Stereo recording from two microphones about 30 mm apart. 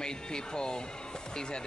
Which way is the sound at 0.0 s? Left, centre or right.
Left.